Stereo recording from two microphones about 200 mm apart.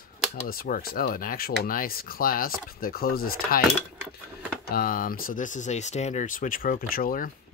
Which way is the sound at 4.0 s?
10° right (ahead or behind).